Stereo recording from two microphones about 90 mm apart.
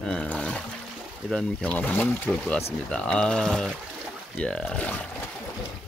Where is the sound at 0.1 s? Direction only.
10° left (ahead or behind).